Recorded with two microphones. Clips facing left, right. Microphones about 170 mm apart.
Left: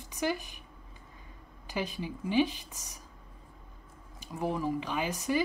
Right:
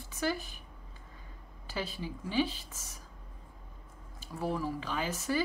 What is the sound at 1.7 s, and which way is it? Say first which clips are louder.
Speech: left 3 dB; 15° left (ahead or behind).